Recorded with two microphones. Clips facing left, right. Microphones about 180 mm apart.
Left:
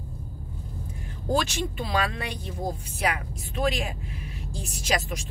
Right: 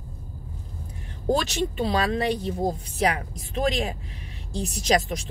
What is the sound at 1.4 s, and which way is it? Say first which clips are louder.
Speech: right 4 dB; 35° right (ahead or behind).